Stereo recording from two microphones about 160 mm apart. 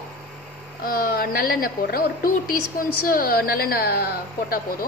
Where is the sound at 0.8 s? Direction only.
65° left (ahead or behind).